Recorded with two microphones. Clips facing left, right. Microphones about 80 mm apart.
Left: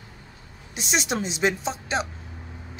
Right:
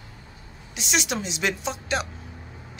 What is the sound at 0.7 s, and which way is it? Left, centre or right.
A woman's voice, left.